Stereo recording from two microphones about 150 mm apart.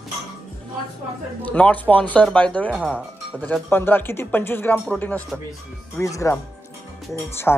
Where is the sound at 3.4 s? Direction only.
10° left (ahead or behind).